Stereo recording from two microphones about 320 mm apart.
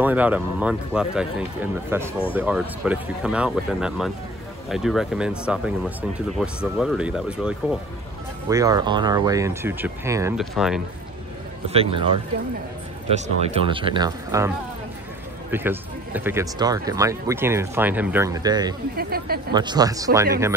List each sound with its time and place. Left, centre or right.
0.0 s speech: centre
11.7 s speech: centre
13.1 s speech: centre
15.5 s speech: centre
18.9 s speech: right
19.5 s speech: centre